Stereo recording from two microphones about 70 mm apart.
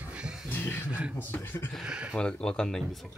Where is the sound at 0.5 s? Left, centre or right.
Left.